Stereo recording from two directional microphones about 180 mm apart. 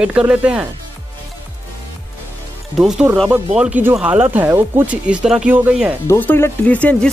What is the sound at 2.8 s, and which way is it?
Speech, 5° right (ahead or behind).